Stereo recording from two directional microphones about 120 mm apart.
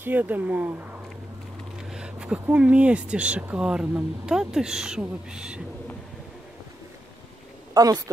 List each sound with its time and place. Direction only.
0.0 s speech: 15° right (ahead or behind)
1.8 s speech: 5° right (ahead or behind)
7.7 s speech: 30° right (ahead or behind)